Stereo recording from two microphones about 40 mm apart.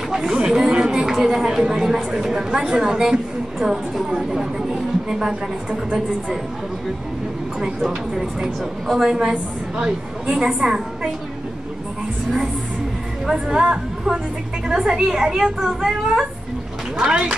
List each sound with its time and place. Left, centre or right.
0.1 s chatter: centre
1.0 s a woman's voice: centre
8.9 s a woman's voice: centre
13.3 s a woman's voice: centre
17.0 s a woman's voice: right